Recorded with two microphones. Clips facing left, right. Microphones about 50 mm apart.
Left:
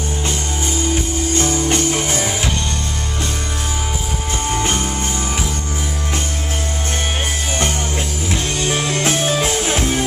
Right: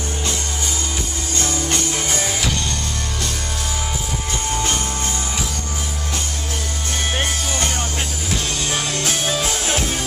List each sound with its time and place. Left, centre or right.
1.4 s music: left
4.6 s music: left
8.6 s music: left